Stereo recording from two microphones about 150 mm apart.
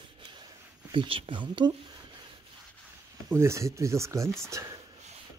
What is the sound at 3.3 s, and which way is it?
Speech, 20° right (ahead or behind).